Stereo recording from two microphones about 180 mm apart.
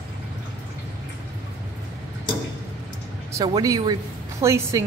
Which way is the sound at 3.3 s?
20° right (ahead or behind).